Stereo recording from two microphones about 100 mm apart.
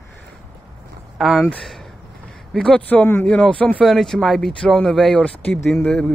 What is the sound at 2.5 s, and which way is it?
Speech, 10° left (ahead or behind).